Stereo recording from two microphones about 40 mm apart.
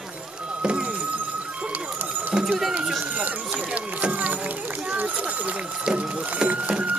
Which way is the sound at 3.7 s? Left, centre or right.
Right.